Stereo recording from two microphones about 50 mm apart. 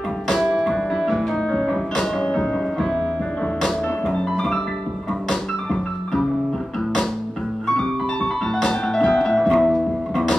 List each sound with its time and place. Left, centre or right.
0.7 s music: centre
5.3 s music: centre
7.6 s piano: centre